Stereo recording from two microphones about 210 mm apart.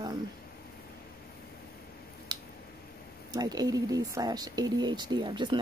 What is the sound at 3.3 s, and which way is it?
Speech, 15° right (ahead or behind).